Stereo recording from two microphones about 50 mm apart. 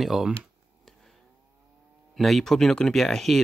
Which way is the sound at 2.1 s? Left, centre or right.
Centre.